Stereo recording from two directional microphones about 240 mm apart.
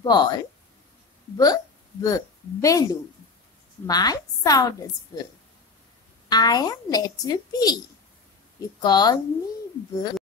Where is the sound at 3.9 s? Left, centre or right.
Centre.